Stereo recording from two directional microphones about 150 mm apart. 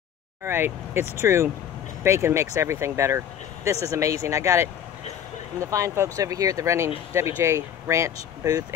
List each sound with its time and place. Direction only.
0.4 s speech: 15° right (ahead or behind)